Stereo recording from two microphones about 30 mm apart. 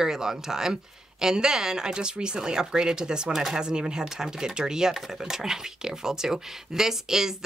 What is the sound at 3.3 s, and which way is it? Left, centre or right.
Speech, centre.